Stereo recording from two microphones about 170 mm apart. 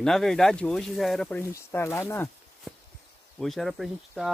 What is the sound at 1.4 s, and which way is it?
Speech, 15° left (ahead or behind).